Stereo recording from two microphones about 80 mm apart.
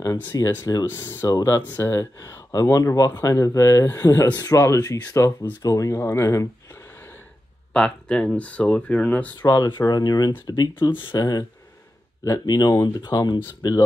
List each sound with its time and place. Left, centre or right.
0.3 s speech: left
0.8 s speech: left
1.2 s speech: left
6.7 s gasp: left
7.7 s speech: centre
9.4 s speech: left
10.8 s speech: left
11.1 s speech: left